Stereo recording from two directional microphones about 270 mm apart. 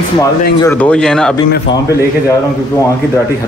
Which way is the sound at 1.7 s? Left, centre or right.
Centre.